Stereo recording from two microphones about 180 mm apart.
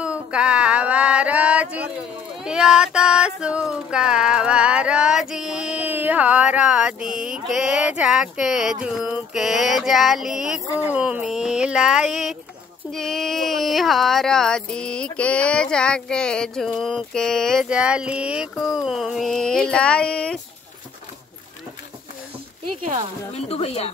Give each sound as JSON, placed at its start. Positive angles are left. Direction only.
{"t": 0.0, "sound": "female singing", "side_deg": -5}
{"t": 23.3, "sound": "speech", "side_deg": 35}